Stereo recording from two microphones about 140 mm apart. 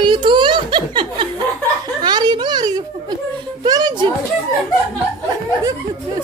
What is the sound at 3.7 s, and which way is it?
Speech, 30° right (ahead or behind).